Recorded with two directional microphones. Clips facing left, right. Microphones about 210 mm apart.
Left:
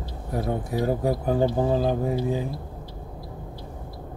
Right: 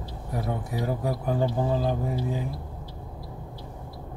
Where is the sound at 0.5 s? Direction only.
30° left (ahead or behind).